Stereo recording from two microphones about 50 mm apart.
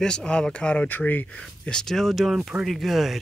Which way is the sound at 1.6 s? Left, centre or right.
Centre.